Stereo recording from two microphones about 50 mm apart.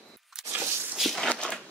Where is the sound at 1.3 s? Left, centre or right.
Left.